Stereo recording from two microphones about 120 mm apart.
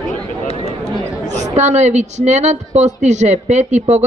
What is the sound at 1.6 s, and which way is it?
A woman's voice, 70° right (ahead or behind).